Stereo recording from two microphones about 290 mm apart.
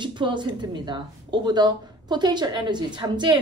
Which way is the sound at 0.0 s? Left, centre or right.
Centre.